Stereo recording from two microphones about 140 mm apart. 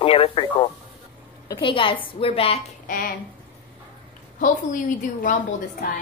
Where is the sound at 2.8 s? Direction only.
90° left.